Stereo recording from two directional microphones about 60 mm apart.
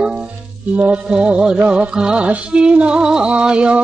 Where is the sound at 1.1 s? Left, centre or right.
Centre.